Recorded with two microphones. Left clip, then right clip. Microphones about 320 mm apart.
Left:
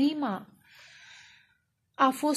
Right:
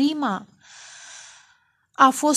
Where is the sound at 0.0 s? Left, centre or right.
Right.